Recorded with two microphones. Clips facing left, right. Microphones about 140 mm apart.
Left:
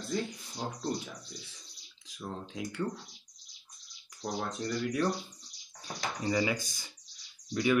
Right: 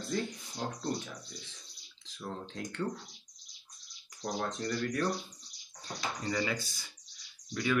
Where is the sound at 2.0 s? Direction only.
10° left (ahead or behind).